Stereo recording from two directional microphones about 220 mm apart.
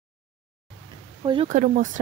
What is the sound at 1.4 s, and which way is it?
Speech, 35° right (ahead or behind).